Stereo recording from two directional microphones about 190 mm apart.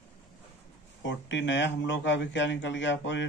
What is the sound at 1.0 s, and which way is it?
Speech, 70° left (ahead or behind).